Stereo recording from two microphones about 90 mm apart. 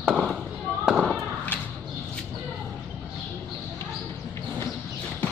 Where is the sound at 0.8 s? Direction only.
Centre (ahead or behind).